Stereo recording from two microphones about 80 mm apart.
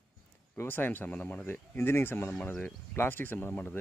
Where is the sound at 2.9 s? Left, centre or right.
Left.